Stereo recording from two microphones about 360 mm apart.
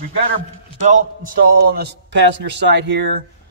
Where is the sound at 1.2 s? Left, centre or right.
Right.